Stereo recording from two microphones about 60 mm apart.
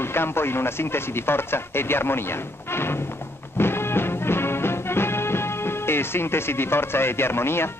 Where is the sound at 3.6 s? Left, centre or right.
Left.